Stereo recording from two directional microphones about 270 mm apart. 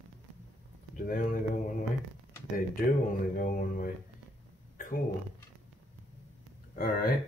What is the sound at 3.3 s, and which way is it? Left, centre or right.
Speech, left.